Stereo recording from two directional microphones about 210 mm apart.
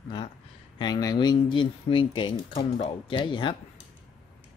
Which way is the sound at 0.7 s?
20° left (ahead or behind).